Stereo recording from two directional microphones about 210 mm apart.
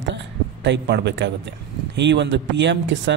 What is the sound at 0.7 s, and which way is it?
A man's voice, 55° right (ahead or behind).